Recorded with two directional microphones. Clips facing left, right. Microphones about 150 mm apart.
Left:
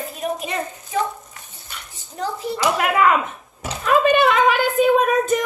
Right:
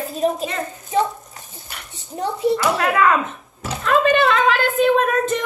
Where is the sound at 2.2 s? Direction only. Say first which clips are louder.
Right 6 dB; 25° right (ahead or behind).